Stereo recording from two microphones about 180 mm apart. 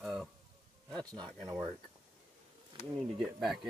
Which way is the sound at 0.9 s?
5° left (ahead or behind).